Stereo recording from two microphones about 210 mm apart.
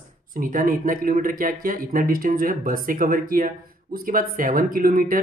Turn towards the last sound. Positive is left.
turn(degrees=-40)  # may be behind; listen again after turning